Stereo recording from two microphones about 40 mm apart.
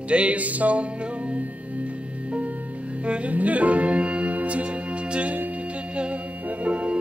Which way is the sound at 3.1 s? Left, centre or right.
Right.